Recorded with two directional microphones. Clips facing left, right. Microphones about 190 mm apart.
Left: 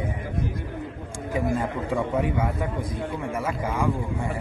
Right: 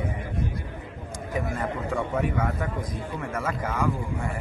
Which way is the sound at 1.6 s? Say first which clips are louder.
Left 2 dB; 10° left (ahead or behind).